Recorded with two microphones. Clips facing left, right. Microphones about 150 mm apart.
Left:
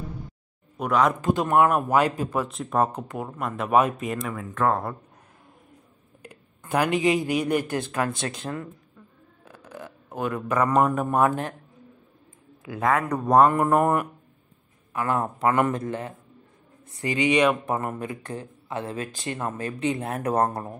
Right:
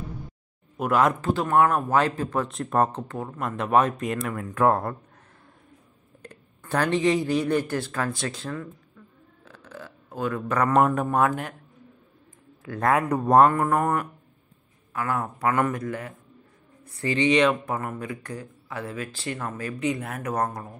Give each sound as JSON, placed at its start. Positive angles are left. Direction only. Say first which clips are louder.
{"t": 0.7, "sound": "speech", "louder": "even", "side_deg": -5}
{"t": 1.2, "sound": "speech", "louder": "left 1 dB", "side_deg": 15}
{"t": 6.2, "sound": "speech", "louder": "even", "side_deg": 10}
{"t": 9.4, "sound": "a sound", "louder": "left 2 dB", "side_deg": 15}
{"t": 10.6, "sound": "speech", "louder": "right 1 dB", "side_deg": 10}
{"t": 11.2, "sound": "speech", "louder": "left 2 dB", "side_deg": 30}
{"t": 12.8, "sound": "speech", "louder": "right 1 dB", "side_deg": -5}
{"t": 13.5, "sound": "speech", "louder": "left 2 dB", "side_deg": 20}